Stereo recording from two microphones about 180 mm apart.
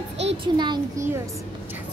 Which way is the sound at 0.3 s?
25° right (ahead or behind).